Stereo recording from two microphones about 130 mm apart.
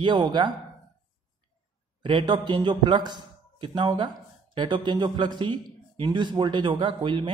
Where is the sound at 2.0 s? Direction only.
40° right (ahead or behind).